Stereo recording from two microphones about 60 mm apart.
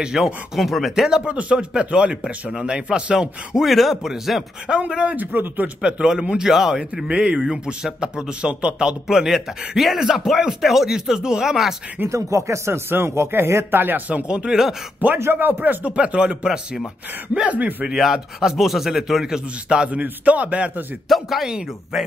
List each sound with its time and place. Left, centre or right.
0.2 s speech: centre
4.6 s speech: centre
5.8 s a man's voice: centre
12.1 s speech: right
13.7 s speech: right; by 14.8 s centre
15.1 s speech: right; by 16.8 s centre
17.3 s speech: right
17.8 s speech: centre; by 20.8 s right
21.1 s a man's voice: centre